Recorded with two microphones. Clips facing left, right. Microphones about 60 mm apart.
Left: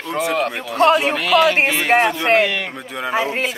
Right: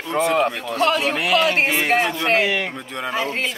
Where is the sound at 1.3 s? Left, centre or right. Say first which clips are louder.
Left 4 dB; centre.